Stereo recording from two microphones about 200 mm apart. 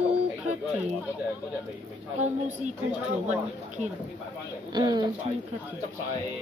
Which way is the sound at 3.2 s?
35° right (ahead or behind).